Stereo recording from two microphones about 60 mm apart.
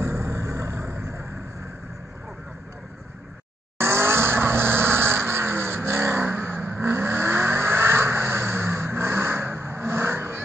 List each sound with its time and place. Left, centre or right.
0.0 s vehicle: right
3.7 s vehicle: right